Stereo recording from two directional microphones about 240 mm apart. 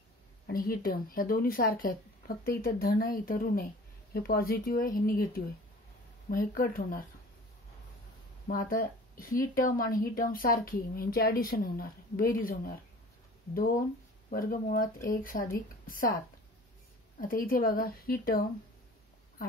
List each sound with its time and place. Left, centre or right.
0.5 s speech: left
8.5 s speech: left
17.2 s speech: left